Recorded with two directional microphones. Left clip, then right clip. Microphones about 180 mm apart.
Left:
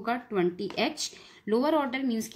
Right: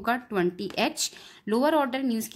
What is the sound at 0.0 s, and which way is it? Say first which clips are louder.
A woman's voice: right 2 dB; 40° right (ahead or behind).